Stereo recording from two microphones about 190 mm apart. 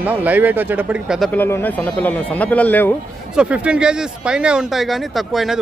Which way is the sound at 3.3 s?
5° right (ahead or behind).